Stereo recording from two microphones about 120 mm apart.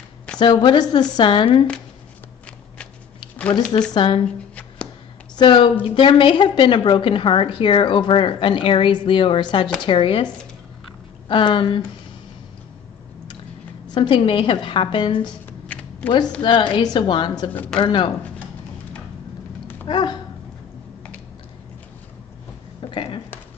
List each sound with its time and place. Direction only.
0.4 s speech: 40° left (ahead or behind)
3.9 s a woman's voice: 45° left (ahead or behind)
5.3 s a woman's voice: 40° left (ahead or behind)
11.2 s a woman's voice: 45° left (ahead or behind)
13.9 s a woman's voice: 45° left (ahead or behind)
15.7 s typing: 15° left (ahead or behind)
16.3 s speech: 45° left (ahead or behind)
19.9 s speech: 40° left (ahead or behind)
22.8 s a sound: 45° left (ahead or behind)